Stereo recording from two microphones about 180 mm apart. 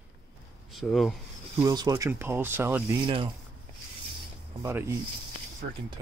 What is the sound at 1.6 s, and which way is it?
Speech, 20° right (ahead or behind).